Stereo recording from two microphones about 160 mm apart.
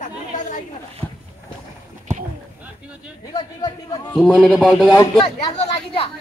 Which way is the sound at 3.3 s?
25° left (ahead or behind).